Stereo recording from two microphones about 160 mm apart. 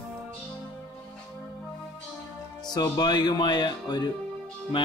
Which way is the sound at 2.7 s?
25° left (ahead or behind).